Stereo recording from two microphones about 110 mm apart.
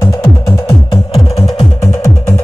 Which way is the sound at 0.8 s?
60° left (ahead or behind).